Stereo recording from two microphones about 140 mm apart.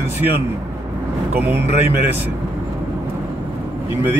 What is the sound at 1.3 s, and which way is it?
Speech, 15° right (ahead or behind).